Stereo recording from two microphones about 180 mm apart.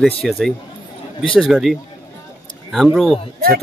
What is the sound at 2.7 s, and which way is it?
Speech, centre (ahead or behind).